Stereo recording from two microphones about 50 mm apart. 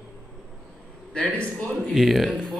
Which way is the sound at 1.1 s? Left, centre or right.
Left.